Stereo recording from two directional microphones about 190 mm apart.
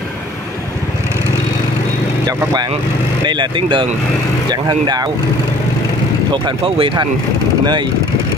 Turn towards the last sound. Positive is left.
turn(degrees=-25)  # may be behind; listen again after turning